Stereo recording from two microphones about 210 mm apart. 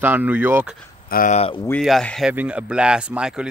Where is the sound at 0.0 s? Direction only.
10° right (ahead or behind).